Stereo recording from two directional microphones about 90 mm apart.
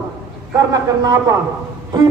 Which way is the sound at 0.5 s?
45° right (ahead or behind).